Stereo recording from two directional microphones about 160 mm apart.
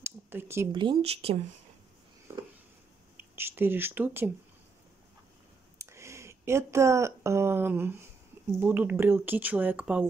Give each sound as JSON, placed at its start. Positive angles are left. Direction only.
{"t": 0.0, "sound": "a sound", "side_deg": -15}
{"t": 0.7, "sound": "speech", "side_deg": -30}
{"t": 3.3, "sound": "speech", "side_deg": -15}
{"t": 5.8, "sound": "speech", "side_deg": -15}